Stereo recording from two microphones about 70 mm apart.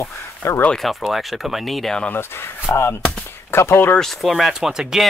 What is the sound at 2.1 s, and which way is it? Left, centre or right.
Speech, left.